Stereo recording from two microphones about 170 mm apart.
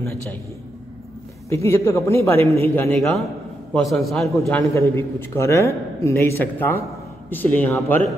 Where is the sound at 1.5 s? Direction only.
15° left (ahead or behind).